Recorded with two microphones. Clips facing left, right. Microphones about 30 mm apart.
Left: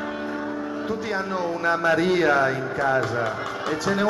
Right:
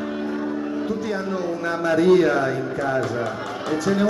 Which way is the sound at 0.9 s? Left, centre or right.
Left.